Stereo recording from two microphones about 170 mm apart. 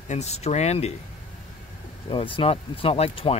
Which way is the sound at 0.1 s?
40° left (ahead or behind).